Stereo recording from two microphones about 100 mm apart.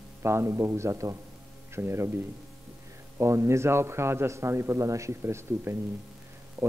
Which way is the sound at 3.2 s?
30° right (ahead or behind).